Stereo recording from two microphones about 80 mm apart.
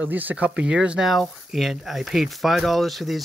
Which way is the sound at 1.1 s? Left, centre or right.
Centre.